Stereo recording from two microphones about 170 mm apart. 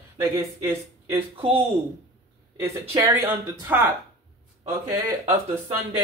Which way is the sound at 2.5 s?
15° right (ahead or behind).